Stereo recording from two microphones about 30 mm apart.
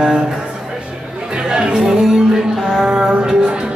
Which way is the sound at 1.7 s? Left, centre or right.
Centre.